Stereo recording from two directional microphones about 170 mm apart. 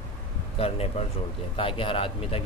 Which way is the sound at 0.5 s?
35° left (ahead or behind).